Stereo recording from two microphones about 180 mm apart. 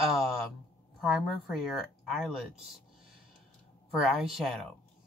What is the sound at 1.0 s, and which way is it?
Speech, centre (ahead or behind).